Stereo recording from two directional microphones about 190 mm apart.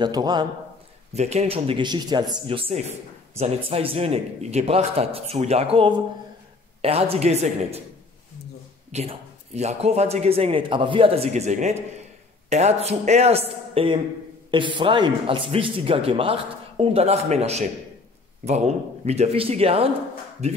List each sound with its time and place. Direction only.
0.0 s a man's voice: 20° right (ahead or behind)
1.1 s a man's voice: 35° right (ahead or behind)
9.6 s a man's voice: 35° right (ahead or behind)